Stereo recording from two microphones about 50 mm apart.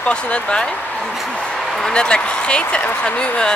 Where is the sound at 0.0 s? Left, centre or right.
Left.